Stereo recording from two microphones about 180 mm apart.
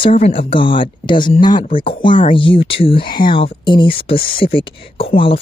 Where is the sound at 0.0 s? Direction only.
30° left (ahead or behind).